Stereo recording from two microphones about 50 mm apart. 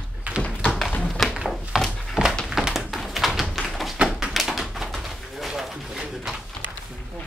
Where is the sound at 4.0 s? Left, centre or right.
Centre.